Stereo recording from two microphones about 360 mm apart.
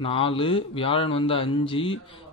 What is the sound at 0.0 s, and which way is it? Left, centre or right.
Speech, centre.